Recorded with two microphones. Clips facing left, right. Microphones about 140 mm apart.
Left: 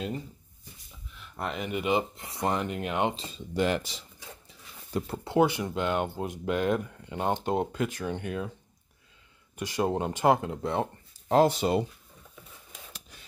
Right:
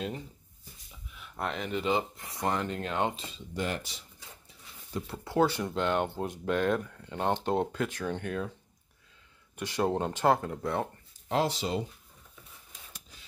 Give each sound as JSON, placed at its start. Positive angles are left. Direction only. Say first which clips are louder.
{"t": 1.1, "sound": "speech", "louder": "even", "side_deg": -5}
{"t": 3.5, "sound": "speech", "louder": "left 7 dB", "side_deg": 90}
{"t": 5.1, "sound": "speech", "louder": "left 4 dB", "side_deg": 25}
{"t": 5.6, "sound": "speech", "louder": "even", "side_deg": 5}
{"t": 9.6, "sound": "speech", "louder": "left 1 dB", "side_deg": 10}
{"t": 11.2, "sound": "speech", "louder": "left 7 dB", "side_deg": 50}